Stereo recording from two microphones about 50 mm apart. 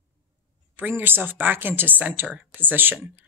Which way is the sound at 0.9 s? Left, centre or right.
Right.